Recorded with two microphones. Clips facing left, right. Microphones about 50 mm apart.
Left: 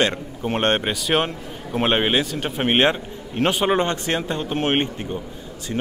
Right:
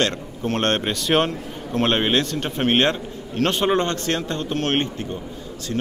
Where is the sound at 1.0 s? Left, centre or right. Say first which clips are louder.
Right 3 dB; centre.